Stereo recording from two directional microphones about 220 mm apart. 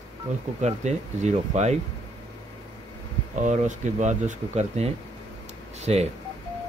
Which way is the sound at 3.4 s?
35° right (ahead or behind).